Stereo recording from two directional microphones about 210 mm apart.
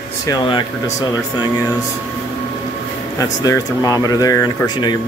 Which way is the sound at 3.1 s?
15° left (ahead or behind).